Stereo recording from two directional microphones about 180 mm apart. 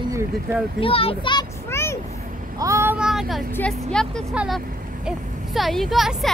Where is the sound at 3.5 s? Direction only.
5° left (ahead or behind).